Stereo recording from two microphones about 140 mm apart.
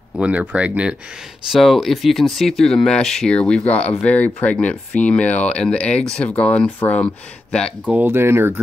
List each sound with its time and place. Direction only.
0.2 s speech: 10° right (ahead or behind); by 7.9 s 5° left (ahead or behind)
7.9 s speech: 15° right (ahead or behind)